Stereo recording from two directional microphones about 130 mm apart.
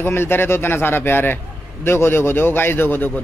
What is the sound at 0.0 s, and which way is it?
Speech, 20° left (ahead or behind).